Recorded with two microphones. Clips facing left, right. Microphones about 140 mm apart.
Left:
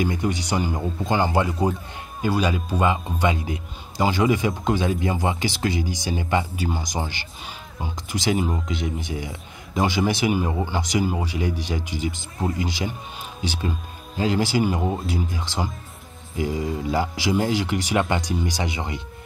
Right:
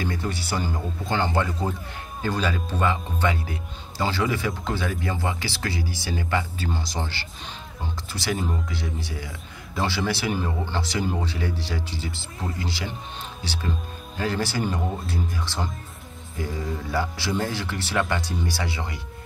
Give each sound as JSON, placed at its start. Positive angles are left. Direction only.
{"t": 0.0, "sound": "speech", "side_deg": 20}